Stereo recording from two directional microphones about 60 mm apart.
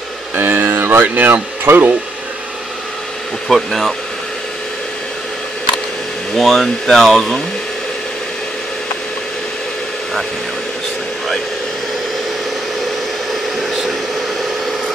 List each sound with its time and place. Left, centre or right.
0.4 s speech: right
3.4 s speech: centre
6.3 s speech: centre
13.3 s a sound: centre